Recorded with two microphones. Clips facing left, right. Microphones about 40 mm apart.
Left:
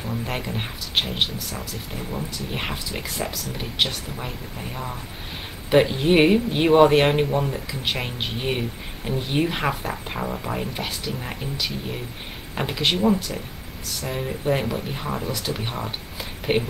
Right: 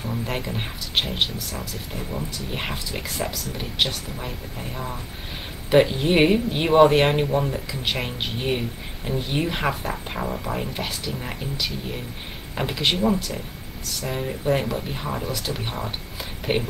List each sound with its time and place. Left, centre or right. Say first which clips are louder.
0.0 s speech: even; centre